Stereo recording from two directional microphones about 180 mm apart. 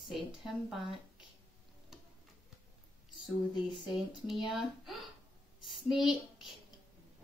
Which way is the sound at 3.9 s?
Centre (ahead or behind).